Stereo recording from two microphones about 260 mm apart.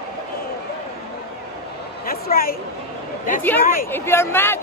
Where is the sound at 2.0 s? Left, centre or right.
Left.